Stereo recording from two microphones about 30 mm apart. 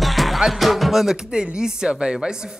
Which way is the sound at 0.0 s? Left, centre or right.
Centre.